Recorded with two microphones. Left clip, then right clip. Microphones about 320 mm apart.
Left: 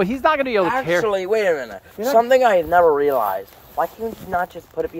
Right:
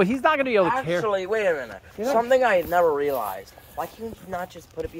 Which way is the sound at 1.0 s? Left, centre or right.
Left.